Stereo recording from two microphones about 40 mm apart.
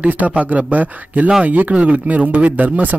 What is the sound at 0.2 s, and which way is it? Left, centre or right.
A man's voice, right.